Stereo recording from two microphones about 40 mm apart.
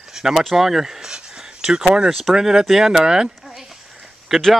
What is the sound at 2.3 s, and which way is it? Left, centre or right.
Speech, centre.